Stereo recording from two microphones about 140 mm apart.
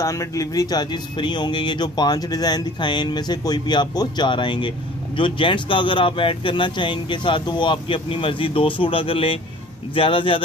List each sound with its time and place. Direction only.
0.0 s speech: 20° left (ahead or behind); by 10.4 s 40° left (ahead or behind)